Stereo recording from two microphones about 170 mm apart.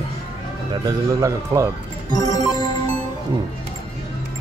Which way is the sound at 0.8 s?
20° right (ahead or behind).